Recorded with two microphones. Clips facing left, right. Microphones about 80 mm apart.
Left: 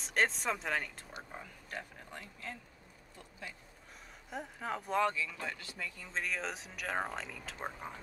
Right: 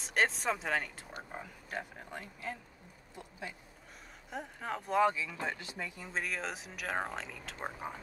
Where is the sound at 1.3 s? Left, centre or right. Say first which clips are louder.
Right 3 dB; centre.